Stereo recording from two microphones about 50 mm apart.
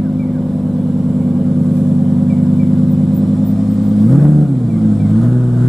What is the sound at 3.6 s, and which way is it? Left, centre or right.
Vehicle, centre.